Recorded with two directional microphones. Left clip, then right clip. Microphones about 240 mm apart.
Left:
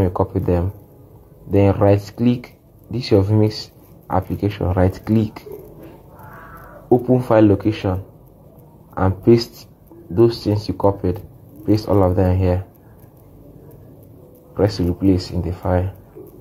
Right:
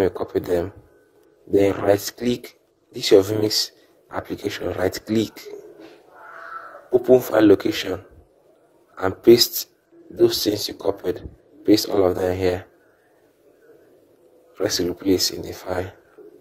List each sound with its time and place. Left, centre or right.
0.0 s speech: right
7.1 s speech: right
9.0 s speech: right
14.7 s speech: right